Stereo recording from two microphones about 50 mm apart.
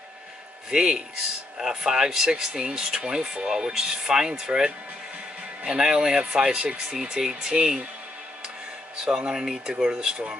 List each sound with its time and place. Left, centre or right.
0.7 s speech: centre
5.8 s speech: centre
9.0 s speech: centre